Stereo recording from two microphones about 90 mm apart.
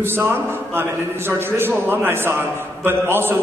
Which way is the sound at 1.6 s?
25° right (ahead or behind).